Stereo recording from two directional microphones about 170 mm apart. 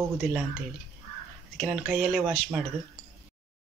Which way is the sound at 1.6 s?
5° right (ahead or behind).